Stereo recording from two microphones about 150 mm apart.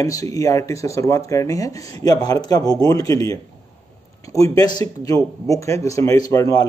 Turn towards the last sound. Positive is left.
turn(degrees=20)  # may be behind; listen again after turning